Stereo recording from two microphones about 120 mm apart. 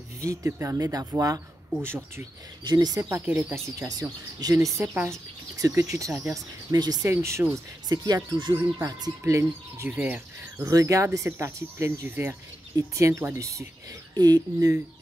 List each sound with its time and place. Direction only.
0.2 s speech: 25° right (ahead or behind)
1.8 s speech: 20° right (ahead or behind)
2.6 s speech: 35° right (ahead or behind)
3.3 s speech: 15° right (ahead or behind); by 8.5 s 35° right (ahead or behind)
8.5 s speech: 20° right (ahead or behind)
10.6 s speech: 30° right (ahead or behind)